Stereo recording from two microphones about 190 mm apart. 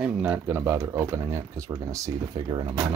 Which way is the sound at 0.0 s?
5° right (ahead or behind).